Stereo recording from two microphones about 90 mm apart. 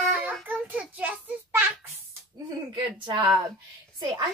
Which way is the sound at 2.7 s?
60° right (ahead or behind).